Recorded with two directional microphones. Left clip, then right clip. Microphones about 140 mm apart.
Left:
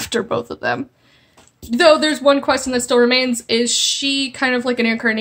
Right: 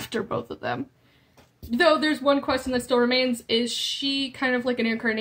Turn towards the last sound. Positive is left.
turn(degrees=35)  # may be behind; listen again after turning